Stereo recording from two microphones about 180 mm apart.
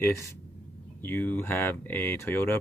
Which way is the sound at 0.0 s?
15° left (ahead or behind).